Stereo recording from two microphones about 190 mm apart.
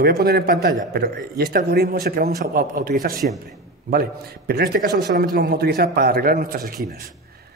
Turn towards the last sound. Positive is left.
turn(degrees=-50)  # may be behind; listen again after turning